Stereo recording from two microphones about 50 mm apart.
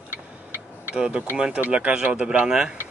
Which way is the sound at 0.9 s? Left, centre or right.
Right.